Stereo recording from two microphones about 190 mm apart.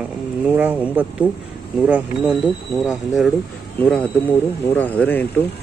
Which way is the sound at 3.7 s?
10° left (ahead or behind).